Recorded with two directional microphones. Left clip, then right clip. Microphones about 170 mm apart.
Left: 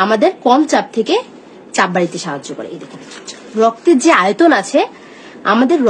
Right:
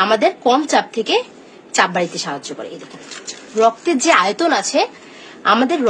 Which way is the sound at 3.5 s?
30° left (ahead or behind).